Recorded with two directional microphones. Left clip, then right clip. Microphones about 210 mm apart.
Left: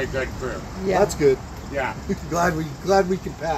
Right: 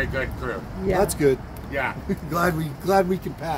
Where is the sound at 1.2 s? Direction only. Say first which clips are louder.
Left 2 dB; 50° right (ahead or behind).